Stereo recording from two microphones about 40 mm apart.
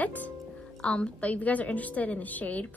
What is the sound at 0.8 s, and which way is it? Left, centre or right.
A woman's voice, left.